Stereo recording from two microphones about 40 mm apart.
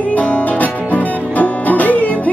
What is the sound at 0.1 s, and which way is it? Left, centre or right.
Music, left.